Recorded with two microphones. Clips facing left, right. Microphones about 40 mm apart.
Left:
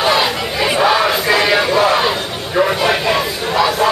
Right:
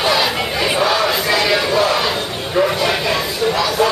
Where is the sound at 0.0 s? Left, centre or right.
Centre.